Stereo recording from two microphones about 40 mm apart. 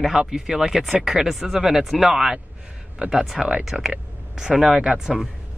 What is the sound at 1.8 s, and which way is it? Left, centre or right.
Speech, centre.